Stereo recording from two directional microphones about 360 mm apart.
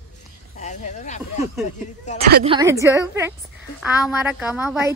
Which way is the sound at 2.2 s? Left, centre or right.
Right.